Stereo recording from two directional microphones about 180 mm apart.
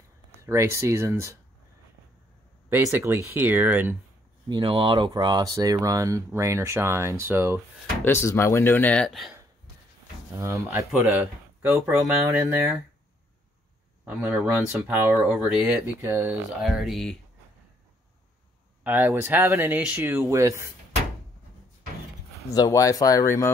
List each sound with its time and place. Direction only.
0.3 s speech: 15° right (ahead or behind)
2.7 s speech: 15° right (ahead or behind)
4.5 s speech: 25° right (ahead or behind); by 7.6 s 10° right (ahead or behind)
8.0 s speech: 15° left (ahead or behind)
10.3 s speech: 15° right (ahead or behind)
14.0 s speech: 10° right (ahead or behind)
16.0 s speech: 10° right (ahead or behind)
16.6 s speech: centre (ahead or behind)
18.9 s speech: 10° right (ahead or behind)
22.5 s speech: 20° left (ahead or behind)